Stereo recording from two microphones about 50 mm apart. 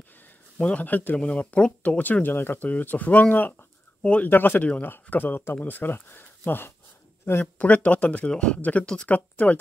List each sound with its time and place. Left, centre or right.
0.6 s speech: centre
0.8 s speech: left
1.1 s speech: left
2.2 s speech: left
2.7 s speech: left
4.0 s speech: left
4.3 s speech: left
7.5 s speech: left
8.3 s speech: centre
8.5 s speech: left
8.8 s speech: centre
9.1 s speech: left